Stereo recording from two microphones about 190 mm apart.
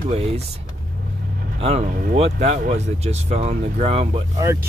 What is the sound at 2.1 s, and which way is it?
Speech, 40° right (ahead or behind).